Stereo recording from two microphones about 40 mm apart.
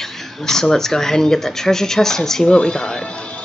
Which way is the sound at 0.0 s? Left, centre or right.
Centre.